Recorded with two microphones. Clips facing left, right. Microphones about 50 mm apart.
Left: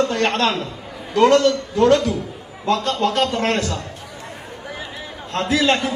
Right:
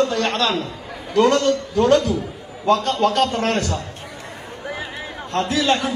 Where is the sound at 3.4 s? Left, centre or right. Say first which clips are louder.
Left 1 dB; left.